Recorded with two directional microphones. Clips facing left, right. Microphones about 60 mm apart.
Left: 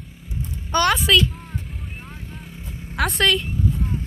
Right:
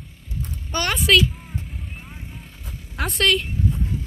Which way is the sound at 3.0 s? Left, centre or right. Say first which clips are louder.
Left 5 dB; left.